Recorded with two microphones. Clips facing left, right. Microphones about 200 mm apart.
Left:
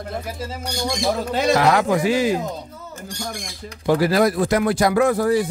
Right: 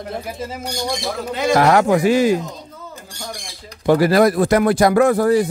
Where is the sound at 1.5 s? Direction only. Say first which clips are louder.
Right 5 dB; 50° right (ahead or behind).